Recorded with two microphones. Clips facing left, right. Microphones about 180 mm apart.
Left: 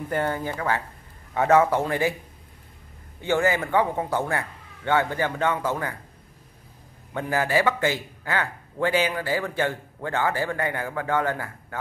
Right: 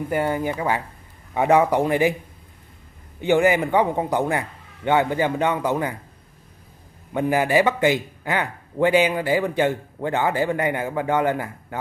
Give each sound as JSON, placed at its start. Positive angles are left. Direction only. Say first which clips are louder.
{"t": 0.1, "sound": "a man's voice", "louder": "right 3 dB", "side_deg": -15}
{"t": 3.2, "sound": "a man's voice", "louder": "right 5 dB", "side_deg": -15}
{"t": 7.2, "sound": "a man's voice", "louder": "right 5 dB", "side_deg": -15}